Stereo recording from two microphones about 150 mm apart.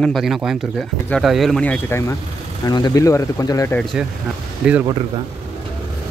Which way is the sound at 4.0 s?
5° right (ahead or behind).